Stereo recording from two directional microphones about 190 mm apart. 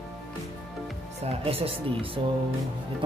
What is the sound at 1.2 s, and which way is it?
Speech, 30° right (ahead or behind).